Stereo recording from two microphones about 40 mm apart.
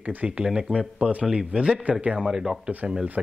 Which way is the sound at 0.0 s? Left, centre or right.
Right.